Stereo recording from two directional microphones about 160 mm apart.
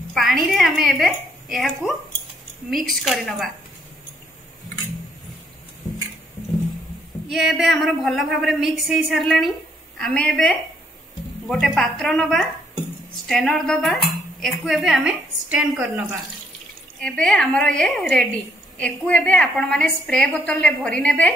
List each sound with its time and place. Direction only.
0.1 s a sound: centre (ahead or behind)
2.7 s a woman's voice: centre (ahead or behind)
7.2 s a woman's voice: centre (ahead or behind)
11.6 s a woman's voice: 5° left (ahead or behind)
17.0 s a woman's voice: 5° left (ahead or behind)